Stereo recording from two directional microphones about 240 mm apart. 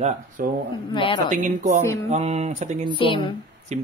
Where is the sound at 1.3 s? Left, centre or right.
Right.